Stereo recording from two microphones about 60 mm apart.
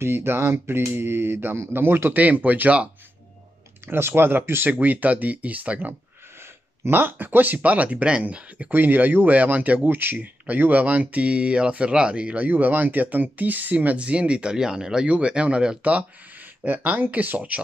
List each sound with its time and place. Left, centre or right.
0.0 s speech: right
2.1 s speech: right
3.8 s speech: right
6.4 s speech: right